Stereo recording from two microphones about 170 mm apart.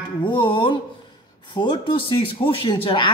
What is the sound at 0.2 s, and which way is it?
Music, 30° left (ahead or behind).